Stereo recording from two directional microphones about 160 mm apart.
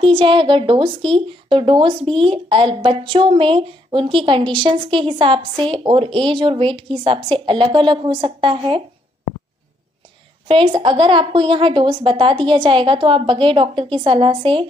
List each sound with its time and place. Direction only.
0.0 s speech: 30° right (ahead or behind)
10.5 s speech: 30° right (ahead or behind)